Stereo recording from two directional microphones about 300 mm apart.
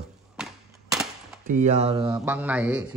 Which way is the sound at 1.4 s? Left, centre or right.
Right.